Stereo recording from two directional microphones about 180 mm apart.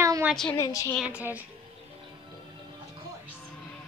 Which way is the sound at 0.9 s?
5° right (ahead or behind).